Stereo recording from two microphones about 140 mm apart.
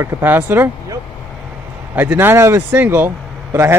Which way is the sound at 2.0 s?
15° right (ahead or behind).